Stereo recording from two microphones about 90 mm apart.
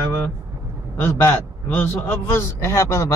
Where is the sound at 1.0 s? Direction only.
25° left (ahead or behind).